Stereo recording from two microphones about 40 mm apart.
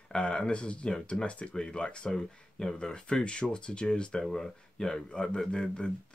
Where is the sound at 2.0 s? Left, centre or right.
Centre.